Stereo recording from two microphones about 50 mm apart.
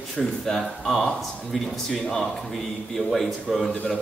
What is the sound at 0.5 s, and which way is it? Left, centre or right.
Speech, centre.